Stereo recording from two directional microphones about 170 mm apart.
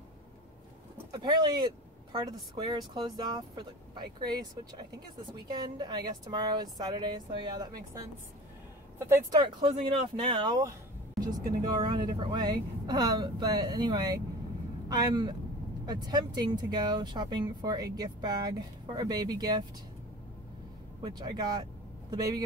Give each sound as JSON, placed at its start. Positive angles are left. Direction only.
{"t": 1.1, "sound": "speech", "side_deg": -25}
{"t": 9.9, "sound": "speech", "side_deg": -30}
{"t": 21.0, "sound": "speech", "side_deg": -25}